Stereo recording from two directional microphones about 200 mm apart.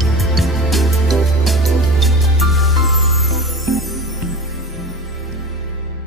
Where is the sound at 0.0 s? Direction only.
Centre (ahead or behind).